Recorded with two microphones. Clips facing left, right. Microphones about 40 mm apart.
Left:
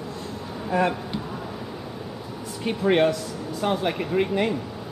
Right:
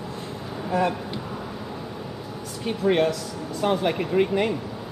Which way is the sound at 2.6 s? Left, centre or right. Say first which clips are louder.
Left 1 dB; centre.